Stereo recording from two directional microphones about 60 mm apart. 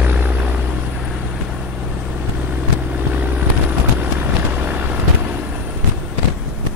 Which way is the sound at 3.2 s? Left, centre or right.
Right.